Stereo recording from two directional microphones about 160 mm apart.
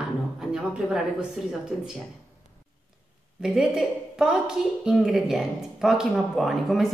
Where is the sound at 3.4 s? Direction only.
5° right (ahead or behind).